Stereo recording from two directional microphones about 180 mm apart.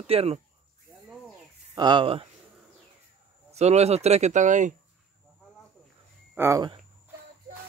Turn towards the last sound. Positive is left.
turn(degrees=-15)  # may be behind; listen again after turning